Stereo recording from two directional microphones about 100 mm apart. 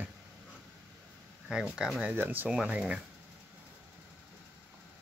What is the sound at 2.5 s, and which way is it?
Speech, 10° right (ahead or behind).